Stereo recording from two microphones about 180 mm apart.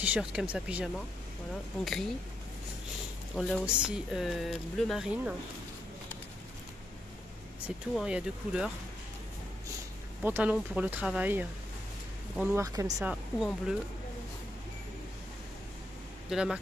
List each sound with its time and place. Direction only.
0.0 s speech: 5° right (ahead or behind)
3.3 s speech: 5° left (ahead or behind)
7.6 s speech: 5° right (ahead or behind)
10.2 s speech: 10° right (ahead or behind)
13.0 s speech: 5° right (ahead or behind)
16.3 s speech: centre (ahead or behind)